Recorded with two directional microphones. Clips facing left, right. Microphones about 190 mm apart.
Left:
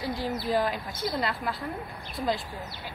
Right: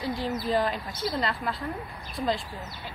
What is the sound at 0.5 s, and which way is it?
Speech, 5° left (ahead or behind).